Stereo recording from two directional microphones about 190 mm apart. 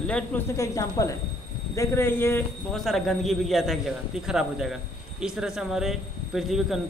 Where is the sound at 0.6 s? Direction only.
15° left (ahead or behind).